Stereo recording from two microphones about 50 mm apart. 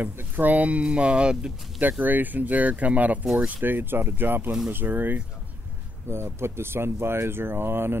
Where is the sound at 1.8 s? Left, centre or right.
Right.